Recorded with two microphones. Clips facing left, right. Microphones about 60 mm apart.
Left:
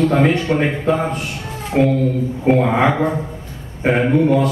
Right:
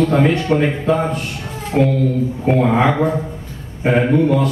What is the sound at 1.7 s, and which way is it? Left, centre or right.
Speech, left.